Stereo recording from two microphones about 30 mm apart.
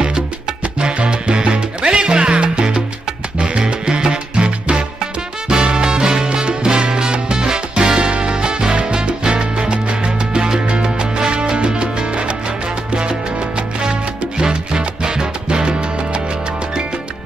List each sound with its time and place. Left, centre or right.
0.7 s salsa music: right
3.4 s music: right
6.2 s salsa music: right
7.4 s music: right
8.1 s salsa music: right